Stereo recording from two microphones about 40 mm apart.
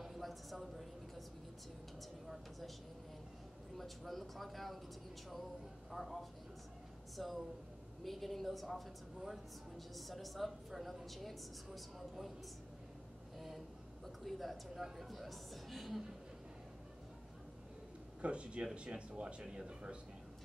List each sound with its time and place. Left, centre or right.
0.0 s a sound: centre
3.7 s a woman's voice: centre
5.9 s a woman's voice: centre
9.9 s a woman's voice: centre
14.0 s a woman's voice: centre
18.2 s speech: right